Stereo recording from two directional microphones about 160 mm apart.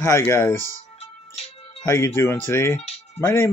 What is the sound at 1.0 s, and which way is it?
Music, 40° left (ahead or behind).